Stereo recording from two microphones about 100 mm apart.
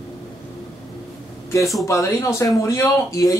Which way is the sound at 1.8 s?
30° left (ahead or behind).